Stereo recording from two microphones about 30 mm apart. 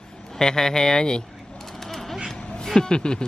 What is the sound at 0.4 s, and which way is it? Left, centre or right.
Speech, centre.